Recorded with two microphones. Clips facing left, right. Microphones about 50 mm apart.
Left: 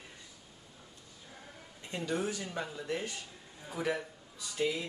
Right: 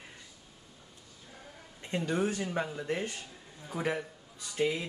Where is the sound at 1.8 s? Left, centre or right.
Right.